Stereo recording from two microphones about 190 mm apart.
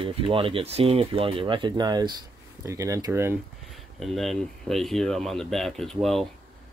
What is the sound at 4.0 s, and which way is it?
Speech, centre (ahead or behind).